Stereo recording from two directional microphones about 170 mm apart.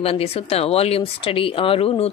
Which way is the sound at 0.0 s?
35° left (ahead or behind).